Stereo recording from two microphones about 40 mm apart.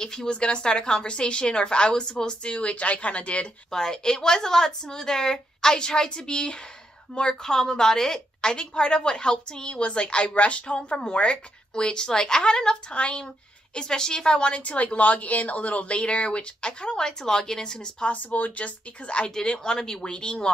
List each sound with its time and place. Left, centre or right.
0.0 s a woman's voice: centre
3.7 s a woman's voice: centre; by 10.8 s left
10.8 s a woman's voice: left
13.7 s a woman's voice: centre
18.0 s a woman's voice: left
19.6 s a woman's voice: centre